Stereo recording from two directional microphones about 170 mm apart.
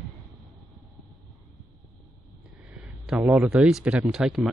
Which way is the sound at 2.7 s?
10° right (ahead or behind).